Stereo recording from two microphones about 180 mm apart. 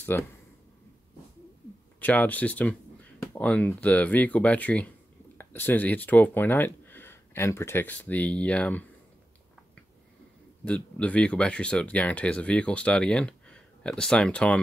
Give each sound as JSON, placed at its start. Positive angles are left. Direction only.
{"t": 0.1, "sound": "speech", "side_deg": 10}
{"t": 2.0, "sound": "speech", "side_deg": 10}
{"t": 10.6, "sound": "speech", "side_deg": 5}